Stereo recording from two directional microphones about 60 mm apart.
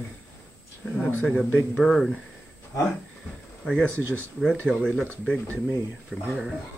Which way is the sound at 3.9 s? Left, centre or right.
Right.